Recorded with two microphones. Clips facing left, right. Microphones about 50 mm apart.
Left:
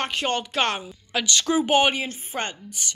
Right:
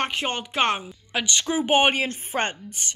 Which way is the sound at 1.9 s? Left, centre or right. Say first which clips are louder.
Right 3 dB; right.